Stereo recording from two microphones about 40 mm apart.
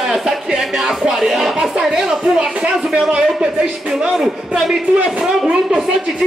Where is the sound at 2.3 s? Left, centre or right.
Right.